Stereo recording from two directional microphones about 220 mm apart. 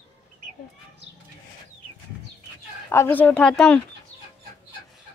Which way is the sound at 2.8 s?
10° left (ahead or behind).